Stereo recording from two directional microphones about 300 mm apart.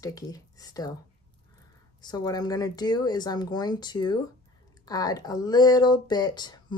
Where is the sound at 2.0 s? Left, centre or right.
Centre.